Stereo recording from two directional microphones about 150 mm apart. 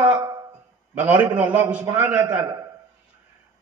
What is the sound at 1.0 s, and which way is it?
A man's voice, 10° right (ahead or behind).